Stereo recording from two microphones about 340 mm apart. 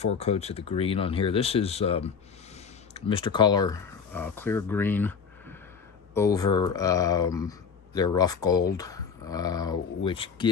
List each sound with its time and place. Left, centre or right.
0.2 s speech: centre